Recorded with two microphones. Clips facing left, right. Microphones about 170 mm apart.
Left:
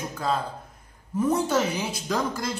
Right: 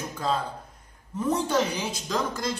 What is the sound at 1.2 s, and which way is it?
Speech, 10° left (ahead or behind).